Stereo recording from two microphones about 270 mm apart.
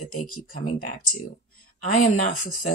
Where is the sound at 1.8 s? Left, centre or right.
Left.